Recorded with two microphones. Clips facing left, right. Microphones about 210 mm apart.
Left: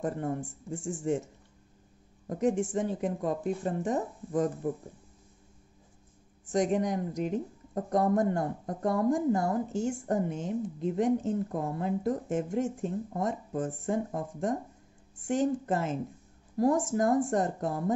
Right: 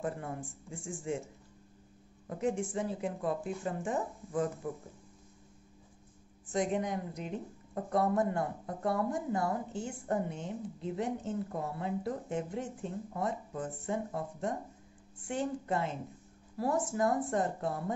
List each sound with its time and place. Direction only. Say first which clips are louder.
0.0 s speech: left 6 dB; 40° left (ahead or behind)
6.5 s speech: left 5 dB; 40° left (ahead or behind)